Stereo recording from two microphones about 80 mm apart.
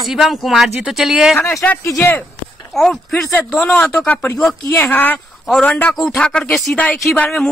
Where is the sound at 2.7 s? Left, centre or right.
Centre.